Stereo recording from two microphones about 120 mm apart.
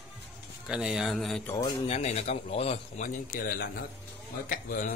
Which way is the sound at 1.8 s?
65° left (ahead or behind).